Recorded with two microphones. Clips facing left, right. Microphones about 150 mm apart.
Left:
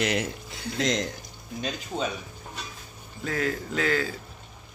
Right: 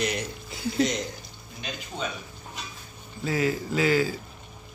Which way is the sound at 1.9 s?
40° left (ahead or behind).